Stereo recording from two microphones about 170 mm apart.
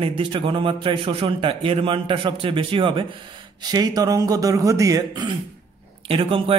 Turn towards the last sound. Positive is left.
turn(degrees=-30)  # may be behind; listen again after turning